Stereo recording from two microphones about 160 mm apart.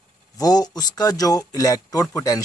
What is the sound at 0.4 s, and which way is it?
Speech, 25° left (ahead or behind).